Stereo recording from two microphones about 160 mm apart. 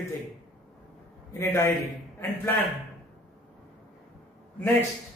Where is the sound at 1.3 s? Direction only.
20° left (ahead or behind).